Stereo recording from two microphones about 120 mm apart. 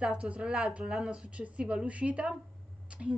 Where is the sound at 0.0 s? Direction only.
10° right (ahead or behind).